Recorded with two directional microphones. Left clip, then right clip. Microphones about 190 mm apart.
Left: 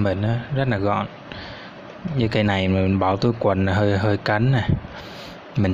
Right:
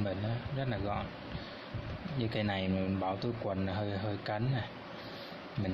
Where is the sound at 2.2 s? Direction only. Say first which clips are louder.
Left 14 dB; 35° left (ahead or behind).